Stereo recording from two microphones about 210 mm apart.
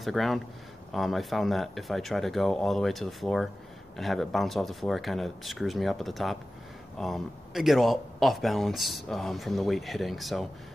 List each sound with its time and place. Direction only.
0.0 s speech: centre (ahead or behind)